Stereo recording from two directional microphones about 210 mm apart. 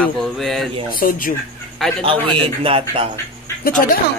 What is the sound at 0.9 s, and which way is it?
Speech, 40° left (ahead or behind).